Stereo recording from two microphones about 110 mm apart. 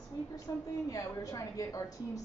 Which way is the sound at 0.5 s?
30° left (ahead or behind).